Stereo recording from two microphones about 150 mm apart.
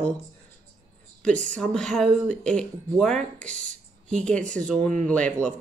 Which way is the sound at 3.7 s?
55° right (ahead or behind).